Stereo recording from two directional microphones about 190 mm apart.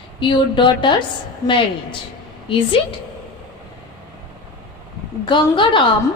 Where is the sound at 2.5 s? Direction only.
30° left (ahead or behind).